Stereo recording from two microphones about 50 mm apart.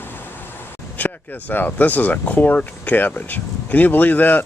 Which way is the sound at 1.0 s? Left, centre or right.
Left.